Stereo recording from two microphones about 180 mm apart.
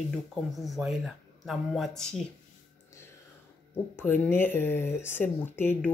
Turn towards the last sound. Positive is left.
turn(degrees=10)  # may be behind; listen again after turning